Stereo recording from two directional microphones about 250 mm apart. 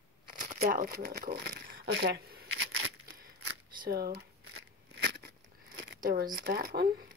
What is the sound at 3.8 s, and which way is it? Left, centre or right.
Speech, right.